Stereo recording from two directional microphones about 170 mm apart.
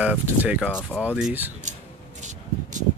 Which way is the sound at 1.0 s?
5° right (ahead or behind).